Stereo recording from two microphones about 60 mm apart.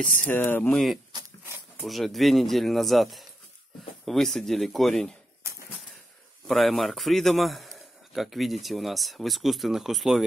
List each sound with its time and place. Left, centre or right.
0.0 s speech: left
1.8 s a man's voice: centre
6.4 s a man's voice: centre